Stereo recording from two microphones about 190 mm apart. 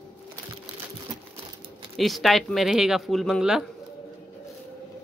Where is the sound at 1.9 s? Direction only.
Centre (ahead or behind).